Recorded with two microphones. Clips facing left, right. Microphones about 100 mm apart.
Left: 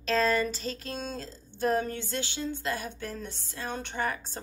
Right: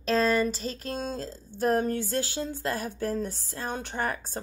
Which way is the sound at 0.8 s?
40° right (ahead or behind).